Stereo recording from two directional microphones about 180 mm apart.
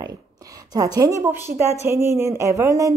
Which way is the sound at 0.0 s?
20° right (ahead or behind).